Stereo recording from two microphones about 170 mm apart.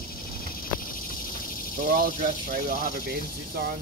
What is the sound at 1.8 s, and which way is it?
Speech, 55° right (ahead or behind).